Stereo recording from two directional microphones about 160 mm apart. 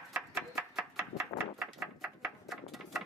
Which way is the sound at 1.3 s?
30° left (ahead or behind).